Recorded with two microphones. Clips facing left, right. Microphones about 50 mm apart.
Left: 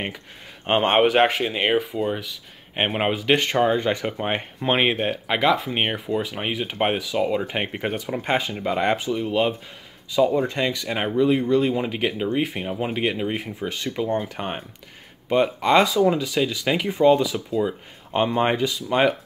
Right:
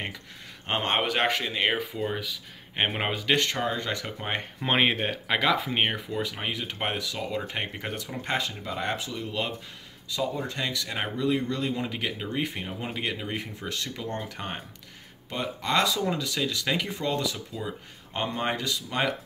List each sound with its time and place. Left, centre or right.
0.7 s speech: left
1.0 s speech: centre
4.6 s speech: centre
6.4 s speech: left
8.6 s speech: left
8.9 s speech: left
15.2 s speech: left
15.9 s speech: centre
16.7 s speech: centre
18.1 s speech: left